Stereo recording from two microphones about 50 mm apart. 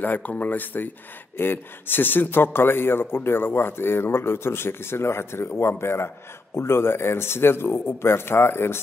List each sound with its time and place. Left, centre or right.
0.0 s a man's voice: left